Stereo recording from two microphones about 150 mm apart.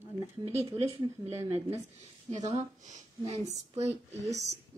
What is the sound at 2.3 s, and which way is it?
A woman's voice, 50° right (ahead or behind).